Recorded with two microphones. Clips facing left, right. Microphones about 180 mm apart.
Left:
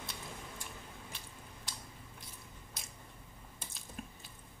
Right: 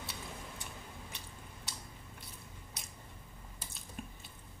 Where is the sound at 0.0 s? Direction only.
70° right (ahead or behind).